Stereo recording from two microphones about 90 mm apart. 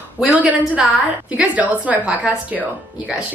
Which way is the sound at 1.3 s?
15° right (ahead or behind).